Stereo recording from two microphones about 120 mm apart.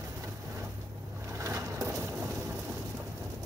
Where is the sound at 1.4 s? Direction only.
25° right (ahead or behind).